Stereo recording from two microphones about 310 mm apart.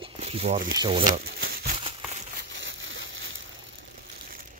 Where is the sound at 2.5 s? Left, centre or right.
Right.